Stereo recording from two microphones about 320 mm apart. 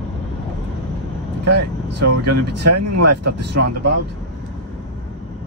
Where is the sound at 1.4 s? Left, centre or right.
Right.